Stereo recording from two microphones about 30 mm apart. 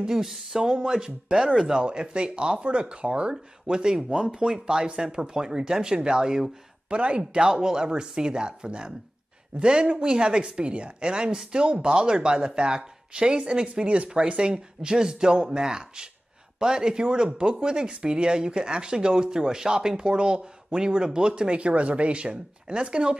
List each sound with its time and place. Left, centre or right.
0.0 s a woman's voice: centre; by 3.3 s right
3.7 s speech: right
6.9 s a woman's voice: right
7.5 s a woman's voice: right